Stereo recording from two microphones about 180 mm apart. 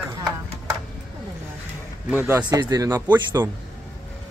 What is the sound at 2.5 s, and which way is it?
Speech, 20° right (ahead or behind).